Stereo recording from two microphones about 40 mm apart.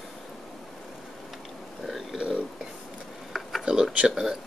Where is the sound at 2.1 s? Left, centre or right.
Right.